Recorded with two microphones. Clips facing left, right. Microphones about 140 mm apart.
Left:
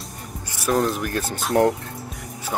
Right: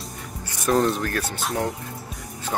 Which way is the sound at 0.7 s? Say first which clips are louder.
Right 1 dB; centre (ahead or behind).